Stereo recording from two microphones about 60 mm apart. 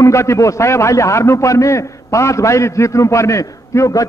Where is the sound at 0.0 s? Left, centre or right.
Left.